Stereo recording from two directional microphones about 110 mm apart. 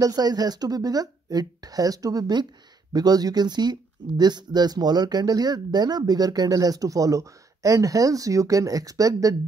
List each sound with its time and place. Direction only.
0.0 s speech: 35° right (ahead or behind)